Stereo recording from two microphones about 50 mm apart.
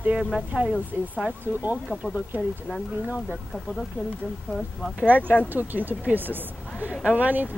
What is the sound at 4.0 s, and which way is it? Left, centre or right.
Speech, left.